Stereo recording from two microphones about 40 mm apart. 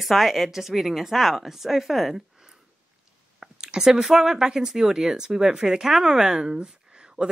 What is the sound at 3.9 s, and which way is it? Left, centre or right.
Speech, centre.